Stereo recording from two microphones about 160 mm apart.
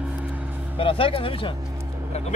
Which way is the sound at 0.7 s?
35° left (ahead or behind).